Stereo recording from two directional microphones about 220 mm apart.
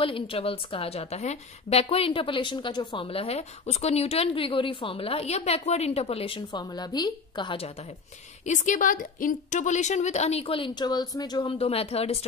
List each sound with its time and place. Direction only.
0.0 s a woman's voice: 25° left (ahead or behind)
8.5 s a woman's voice: 35° left (ahead or behind)